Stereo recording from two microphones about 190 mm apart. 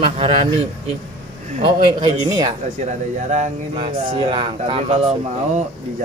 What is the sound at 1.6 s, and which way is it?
Speech, 25° right (ahead or behind).